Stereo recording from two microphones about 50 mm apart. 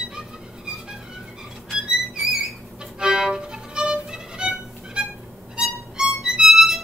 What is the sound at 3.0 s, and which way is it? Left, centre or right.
Violin, centre.